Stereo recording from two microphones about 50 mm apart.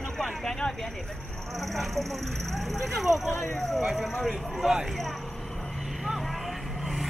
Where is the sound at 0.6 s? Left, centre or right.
Left.